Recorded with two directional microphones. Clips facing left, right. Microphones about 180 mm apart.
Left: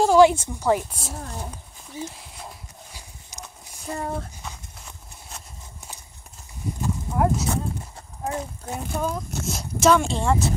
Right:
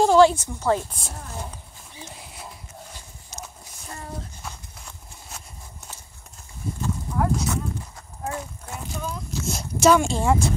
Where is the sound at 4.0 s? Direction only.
55° left (ahead or behind).